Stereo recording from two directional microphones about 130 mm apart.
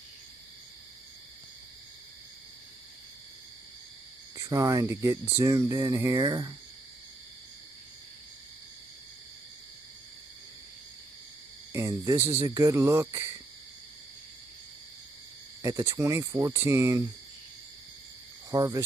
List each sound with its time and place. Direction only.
4.4 s speech: 25° right (ahead or behind)
11.7 s speech: 25° right (ahead or behind)
15.6 s speech: 25° right (ahead or behind)
18.5 s insect: 30° right (ahead or behind)